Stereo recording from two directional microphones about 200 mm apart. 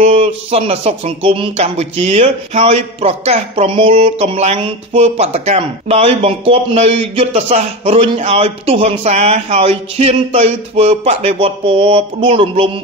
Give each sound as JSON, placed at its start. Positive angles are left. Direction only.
{"t": 0.0, "sound": "speech", "side_deg": -30}